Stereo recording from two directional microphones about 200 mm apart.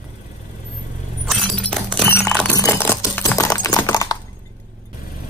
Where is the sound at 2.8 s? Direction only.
10° left (ahead or behind).